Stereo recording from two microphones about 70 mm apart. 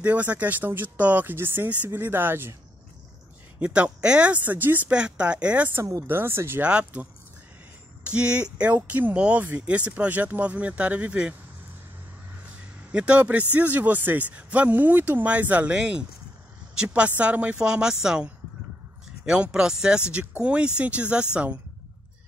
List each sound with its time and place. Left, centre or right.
0.0 s speech: centre
3.5 s speech: centre
4.9 s speech: centre
6.0 s speech: right
6.6 s speech: centre
12.9 s speech: centre